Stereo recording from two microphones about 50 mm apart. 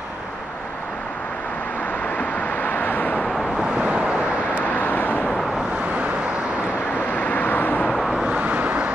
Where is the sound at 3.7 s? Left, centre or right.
Right.